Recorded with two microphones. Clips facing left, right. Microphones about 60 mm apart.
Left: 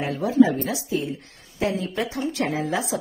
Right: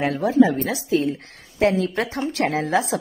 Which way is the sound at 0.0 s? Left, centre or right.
Right.